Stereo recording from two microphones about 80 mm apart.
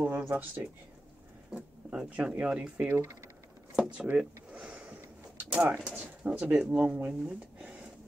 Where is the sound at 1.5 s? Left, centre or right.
Centre.